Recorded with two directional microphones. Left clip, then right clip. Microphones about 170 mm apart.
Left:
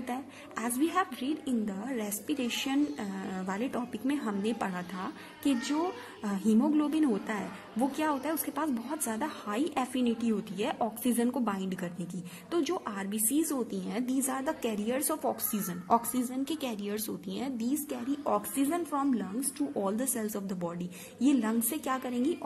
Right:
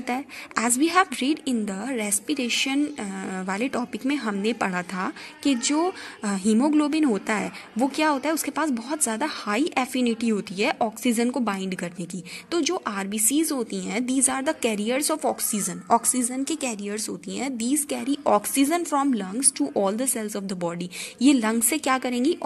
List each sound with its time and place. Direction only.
0.0 s a woman's voice: 15° right (ahead or behind)